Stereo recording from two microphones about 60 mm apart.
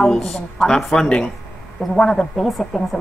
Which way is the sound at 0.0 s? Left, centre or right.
Centre.